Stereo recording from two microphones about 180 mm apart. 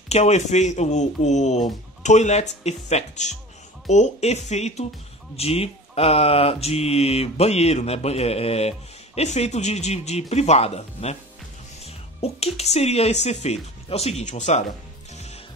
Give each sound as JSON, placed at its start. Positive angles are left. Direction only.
{"t": 0.1, "sound": "mantra", "side_deg": 40}
{"t": 11.8, "sound": "speech", "side_deg": 35}